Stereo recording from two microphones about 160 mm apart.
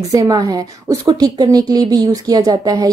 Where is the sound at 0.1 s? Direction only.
20° right (ahead or behind).